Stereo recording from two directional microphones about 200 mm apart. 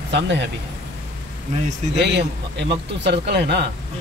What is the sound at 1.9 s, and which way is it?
Speech, 60° right (ahead or behind).